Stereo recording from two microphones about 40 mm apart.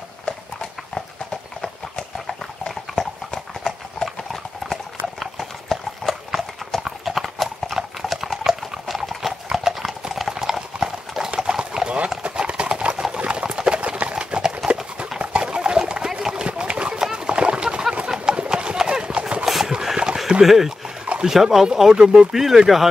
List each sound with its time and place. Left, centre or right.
0.2 s clip-clop: centre
12.4 s clip-clop: right
15.1 s pig: right
16.1 s a sound: centre
16.4 s a sound: right
17.1 s clip-clop: right
19.4 s a sound: centre
21.0 s liquid: right
21.3 s speech: centre